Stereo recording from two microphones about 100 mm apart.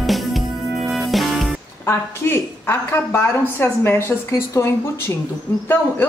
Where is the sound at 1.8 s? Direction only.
25° left (ahead or behind).